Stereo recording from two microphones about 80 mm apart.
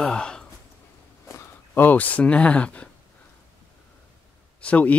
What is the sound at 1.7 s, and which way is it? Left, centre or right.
Speech, left.